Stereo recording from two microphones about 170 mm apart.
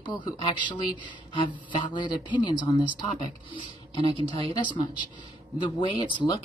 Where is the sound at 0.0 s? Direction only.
25° left (ahead or behind).